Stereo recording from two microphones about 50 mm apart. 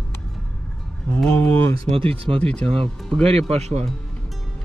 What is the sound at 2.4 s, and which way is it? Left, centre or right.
Speech, centre.